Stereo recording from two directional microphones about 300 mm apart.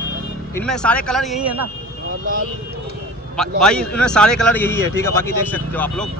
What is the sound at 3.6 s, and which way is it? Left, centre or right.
A man's voice, centre.